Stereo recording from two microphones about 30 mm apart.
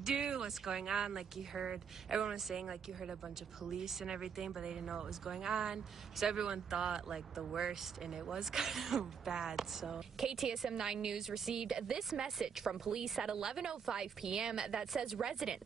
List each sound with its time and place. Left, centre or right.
0.0 s speech: right
15.0 s speech: centre